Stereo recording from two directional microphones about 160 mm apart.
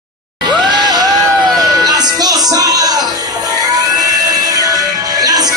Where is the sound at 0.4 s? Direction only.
25° right (ahead or behind).